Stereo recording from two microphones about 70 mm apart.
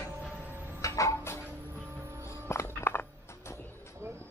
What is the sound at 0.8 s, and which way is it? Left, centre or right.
Music, left.